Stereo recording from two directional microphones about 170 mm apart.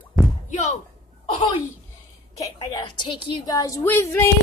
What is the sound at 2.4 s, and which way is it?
A woman's voice, 25° left (ahead or behind).